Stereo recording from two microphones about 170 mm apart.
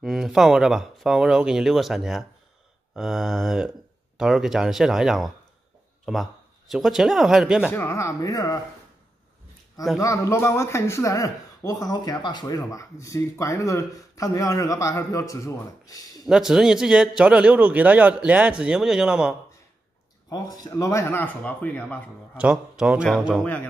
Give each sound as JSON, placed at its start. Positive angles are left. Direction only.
{"t": 0.0, "sound": "a man's voice", "side_deg": 0}
{"t": 7.7, "sound": "speech", "side_deg": 15}
{"t": 9.9, "sound": "speech", "side_deg": 20}
{"t": 16.3, "sound": "a man's voice", "side_deg": -5}
{"t": 20.2, "sound": "speech", "side_deg": 20}
{"t": 22.4, "sound": "a man's voice", "side_deg": -5}